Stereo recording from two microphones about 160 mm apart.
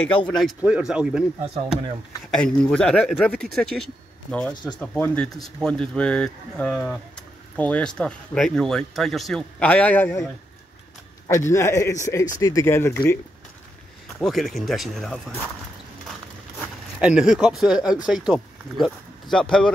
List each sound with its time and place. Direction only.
0.3 s speech: centre (ahead or behind)
2.3 s speech: 5° left (ahead or behind)
11.2 s speech: 15° left (ahead or behind)
14.0 s speech: centre (ahead or behind)
16.1 s a sound: 5° right (ahead or behind)
18.0 s speech: 5° right (ahead or behind)